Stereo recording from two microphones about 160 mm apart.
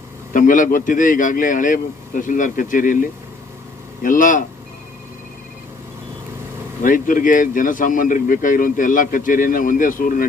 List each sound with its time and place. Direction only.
0.3 s speech: 55° left (ahead or behind)
6.8 s speech: 60° left (ahead or behind)